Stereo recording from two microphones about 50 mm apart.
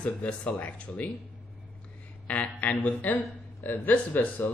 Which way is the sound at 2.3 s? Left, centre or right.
Left.